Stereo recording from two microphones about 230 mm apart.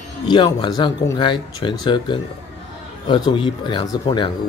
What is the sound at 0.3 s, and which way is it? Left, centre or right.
Speech, centre.